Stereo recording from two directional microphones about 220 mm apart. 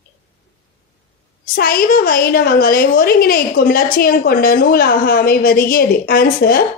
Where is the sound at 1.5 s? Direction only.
40° left (ahead or behind).